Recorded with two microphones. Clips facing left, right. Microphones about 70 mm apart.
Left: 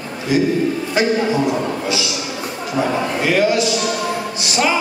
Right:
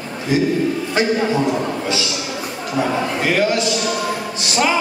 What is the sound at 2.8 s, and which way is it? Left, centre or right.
Speech, centre.